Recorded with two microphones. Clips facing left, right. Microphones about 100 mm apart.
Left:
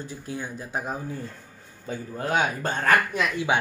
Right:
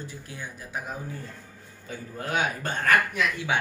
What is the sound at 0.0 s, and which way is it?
Speech, 30° left (ahead or behind).